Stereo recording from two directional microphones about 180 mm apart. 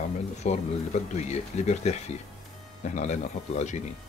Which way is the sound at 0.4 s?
40° left (ahead or behind).